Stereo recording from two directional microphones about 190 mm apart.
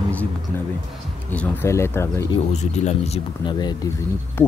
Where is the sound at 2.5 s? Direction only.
35° left (ahead or behind).